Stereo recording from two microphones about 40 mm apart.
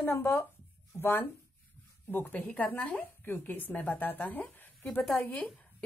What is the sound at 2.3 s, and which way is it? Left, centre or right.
Speech, left.